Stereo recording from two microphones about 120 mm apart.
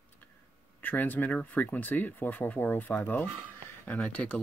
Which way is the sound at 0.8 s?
15° left (ahead or behind).